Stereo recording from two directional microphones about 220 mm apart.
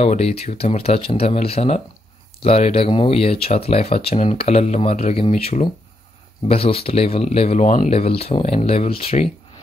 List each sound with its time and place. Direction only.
0.0 s speech: 30° left (ahead or behind)